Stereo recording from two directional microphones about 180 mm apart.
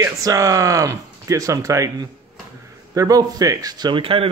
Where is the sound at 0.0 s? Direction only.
20° right (ahead or behind).